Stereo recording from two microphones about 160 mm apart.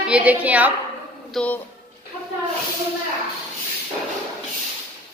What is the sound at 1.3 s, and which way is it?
Speech, 10° left (ahead or behind).